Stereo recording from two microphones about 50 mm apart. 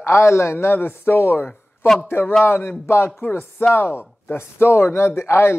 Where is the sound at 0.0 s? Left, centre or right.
Left.